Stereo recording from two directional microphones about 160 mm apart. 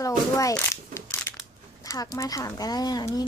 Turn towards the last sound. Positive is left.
turn(degrees=25)  # may be behind; listen again after turning